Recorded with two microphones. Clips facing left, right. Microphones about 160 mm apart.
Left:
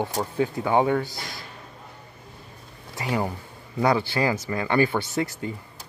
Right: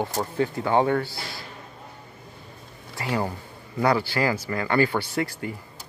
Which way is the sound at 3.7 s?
20° left (ahead or behind).